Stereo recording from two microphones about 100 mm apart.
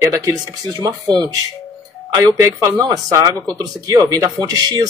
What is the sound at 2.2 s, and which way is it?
Speech, 35° right (ahead or behind).